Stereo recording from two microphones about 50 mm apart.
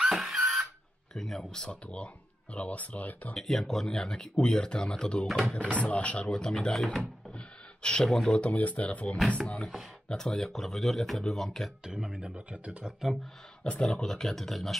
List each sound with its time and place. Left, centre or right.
0.0 s a sound: centre
1.1 s speech: centre
1.5 s speech: centre; by 3.3 s left
3.3 s speech: centre
7.2 s a sound: centre
8.4 s speech: left
10.0 s speech: centre
11.8 s speech: centre
12.2 s speech: centre
13.7 s speech: centre